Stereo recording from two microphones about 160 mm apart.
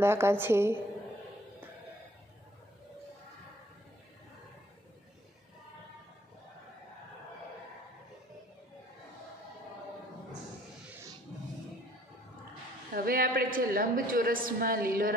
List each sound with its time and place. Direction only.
0.0 s a woman's voice: 15° right (ahead or behind)
10.9 s a sound: 15° right (ahead or behind)
12.9 s a woman's voice: 65° right (ahead or behind)